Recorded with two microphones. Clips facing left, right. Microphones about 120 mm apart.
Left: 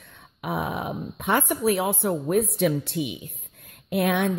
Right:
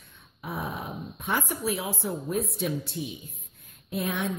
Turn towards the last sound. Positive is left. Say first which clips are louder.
# left 7 dB
turn(degrees=65)  # may be behind; listen again after turning